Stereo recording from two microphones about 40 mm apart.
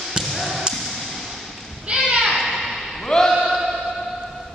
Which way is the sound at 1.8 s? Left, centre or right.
Right.